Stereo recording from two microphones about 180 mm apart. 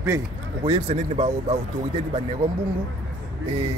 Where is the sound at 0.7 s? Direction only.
35° right (ahead or behind).